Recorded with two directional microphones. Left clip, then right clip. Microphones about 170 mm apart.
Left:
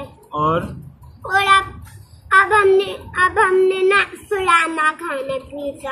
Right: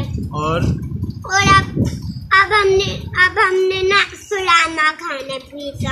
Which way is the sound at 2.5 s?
5° left (ahead or behind).